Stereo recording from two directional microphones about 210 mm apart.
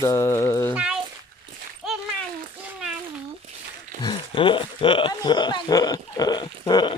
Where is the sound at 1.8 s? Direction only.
Centre (ahead or behind).